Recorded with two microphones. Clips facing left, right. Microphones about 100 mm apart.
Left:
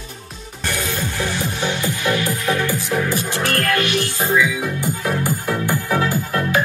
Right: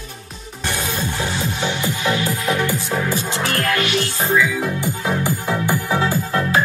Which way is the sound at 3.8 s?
20° right (ahead or behind).